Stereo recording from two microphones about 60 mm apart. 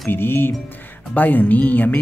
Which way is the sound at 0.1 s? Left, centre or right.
Left.